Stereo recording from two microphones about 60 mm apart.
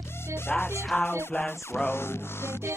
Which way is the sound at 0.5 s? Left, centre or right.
Left.